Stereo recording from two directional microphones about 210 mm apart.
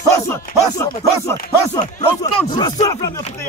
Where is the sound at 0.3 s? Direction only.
15° left (ahead or behind).